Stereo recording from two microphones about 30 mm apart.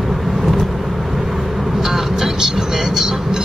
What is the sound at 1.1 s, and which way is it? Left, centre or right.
Vehicle, centre.